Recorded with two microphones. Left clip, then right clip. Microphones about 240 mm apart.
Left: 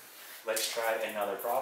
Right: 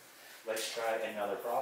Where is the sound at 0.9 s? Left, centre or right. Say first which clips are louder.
Left 2 dB; centre.